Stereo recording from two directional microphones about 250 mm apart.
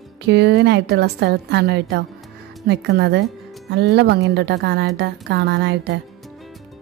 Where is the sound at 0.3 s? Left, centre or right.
Right.